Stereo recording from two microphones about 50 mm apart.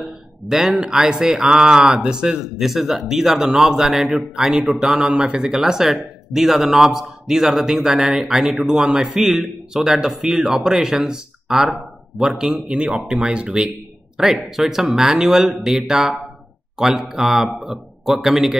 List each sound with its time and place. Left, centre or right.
0.0 s speech: centre
12.6 s speech: right
14.1 s a man's voice: centre